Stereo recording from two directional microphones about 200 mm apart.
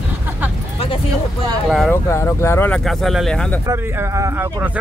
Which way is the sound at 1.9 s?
15° left (ahead or behind).